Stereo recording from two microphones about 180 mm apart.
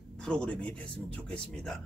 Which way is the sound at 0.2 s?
5° left (ahead or behind).